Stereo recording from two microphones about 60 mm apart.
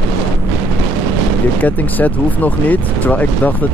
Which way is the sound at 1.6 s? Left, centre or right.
Left.